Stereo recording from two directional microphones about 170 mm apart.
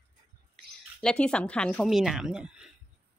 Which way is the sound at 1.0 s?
5° left (ahead or behind).